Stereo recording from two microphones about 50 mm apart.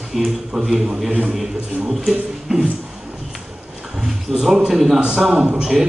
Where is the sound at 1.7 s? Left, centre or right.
Right.